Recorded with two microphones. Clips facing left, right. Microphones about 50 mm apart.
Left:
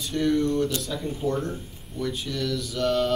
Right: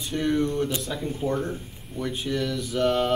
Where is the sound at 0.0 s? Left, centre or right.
Right.